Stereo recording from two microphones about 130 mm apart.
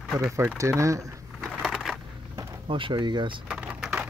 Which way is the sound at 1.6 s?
Centre (ahead or behind).